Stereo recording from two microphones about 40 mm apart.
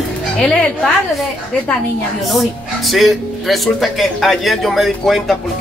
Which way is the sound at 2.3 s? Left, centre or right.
Centre.